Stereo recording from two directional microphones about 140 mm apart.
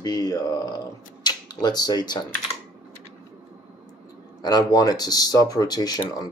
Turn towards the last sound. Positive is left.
turn(degrees=30)  # may be behind; listen again after turning